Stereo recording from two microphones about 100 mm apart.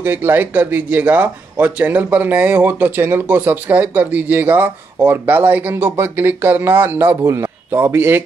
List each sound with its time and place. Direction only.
0.0 s speech: 20° right (ahead or behind)